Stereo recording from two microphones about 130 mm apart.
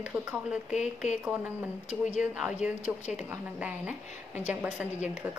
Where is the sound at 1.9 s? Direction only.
65° left (ahead or behind).